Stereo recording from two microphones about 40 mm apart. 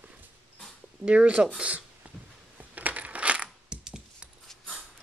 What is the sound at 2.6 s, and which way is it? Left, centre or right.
Coin, right.